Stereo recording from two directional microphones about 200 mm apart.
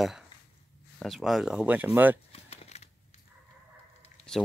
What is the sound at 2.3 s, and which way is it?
Typing, 30° left (ahead or behind).